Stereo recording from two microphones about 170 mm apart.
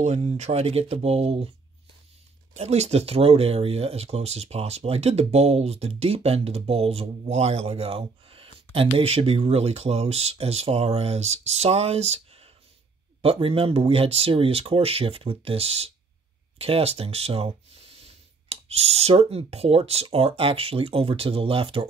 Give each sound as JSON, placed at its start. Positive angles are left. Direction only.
{"t": 0.0, "sound": "speech", "side_deg": -40}
{"t": 2.5, "sound": "speech", "side_deg": -40}